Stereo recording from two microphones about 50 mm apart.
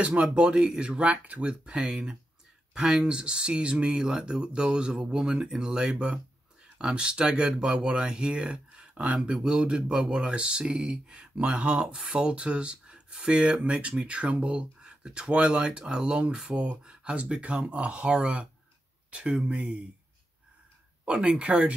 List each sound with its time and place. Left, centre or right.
0.0 s speech: right
21.1 s speech: centre